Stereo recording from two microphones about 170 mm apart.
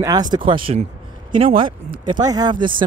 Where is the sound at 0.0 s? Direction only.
25° right (ahead or behind).